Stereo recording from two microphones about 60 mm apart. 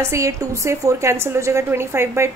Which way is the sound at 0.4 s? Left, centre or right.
Right.